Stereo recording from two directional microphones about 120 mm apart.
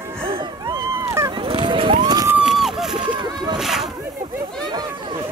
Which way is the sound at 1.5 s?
45° right (ahead or behind).